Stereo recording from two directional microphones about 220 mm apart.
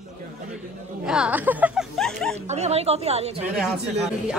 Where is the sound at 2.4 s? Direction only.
30° right (ahead or behind).